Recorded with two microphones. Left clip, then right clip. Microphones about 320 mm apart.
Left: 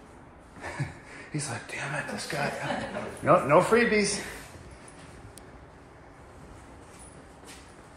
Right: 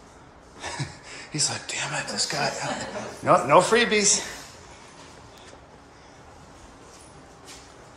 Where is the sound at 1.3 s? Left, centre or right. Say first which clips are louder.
Right 7 dB; centre.